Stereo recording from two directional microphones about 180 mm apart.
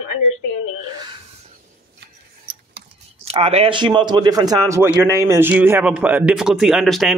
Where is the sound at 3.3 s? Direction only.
35° right (ahead or behind).